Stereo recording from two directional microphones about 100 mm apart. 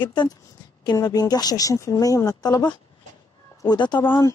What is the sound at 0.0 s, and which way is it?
Speech, 50° left (ahead or behind).